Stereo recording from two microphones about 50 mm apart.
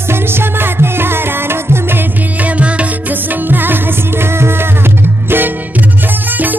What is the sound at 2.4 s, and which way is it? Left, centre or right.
Music, right.